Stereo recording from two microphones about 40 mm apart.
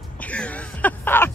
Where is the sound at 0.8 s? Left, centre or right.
Left.